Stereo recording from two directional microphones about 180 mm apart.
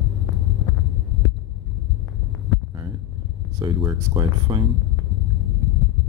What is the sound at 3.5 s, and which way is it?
Speech, 25° right (ahead or behind).